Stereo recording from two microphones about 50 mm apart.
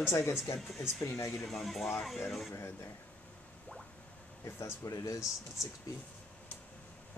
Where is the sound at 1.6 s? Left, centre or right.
Centre.